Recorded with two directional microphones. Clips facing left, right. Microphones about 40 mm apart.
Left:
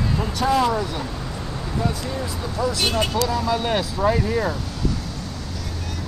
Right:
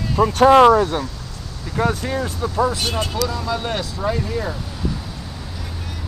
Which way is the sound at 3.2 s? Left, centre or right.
Centre.